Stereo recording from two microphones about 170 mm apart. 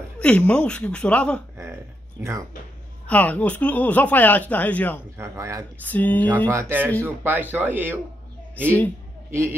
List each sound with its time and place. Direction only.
0.2 s speech: 5° left (ahead or behind)
1.6 s a sound: 15° right (ahead or behind)
3.1 s speech: 10° left (ahead or behind)
5.1 s speech: 15° right (ahead or behind)
5.9 s speech: 10° left (ahead or behind)
6.5 s speech: 15° right (ahead or behind)
8.6 s speech: 10° left (ahead or behind)